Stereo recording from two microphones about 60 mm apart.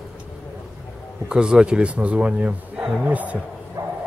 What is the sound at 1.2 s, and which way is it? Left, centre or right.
A man's voice, centre.